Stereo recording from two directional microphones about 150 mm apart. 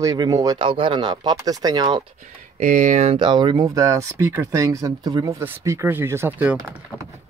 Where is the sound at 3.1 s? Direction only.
30° right (ahead or behind); by 6.6 s 15° right (ahead or behind).